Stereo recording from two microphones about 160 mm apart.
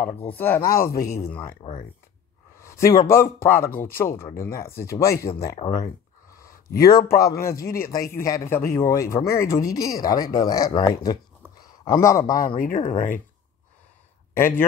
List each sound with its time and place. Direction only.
0.0 s a man's voice: 10° left (ahead or behind)
1.6 s speech: 30° left (ahead or behind)
2.6 s a man's voice: 20° left (ahead or behind)
5.8 s a sound: 20° left (ahead or behind)
6.9 s speech: 20° left (ahead or behind)
7.5 s speech: 65° left (ahead or behind)
7.9 s speech: 20° left (ahead or behind)
12.4 s speech: 60° left (ahead or behind)
12.7 s speech: 40° left (ahead or behind)
14.3 s speech: 15° left (ahead or behind)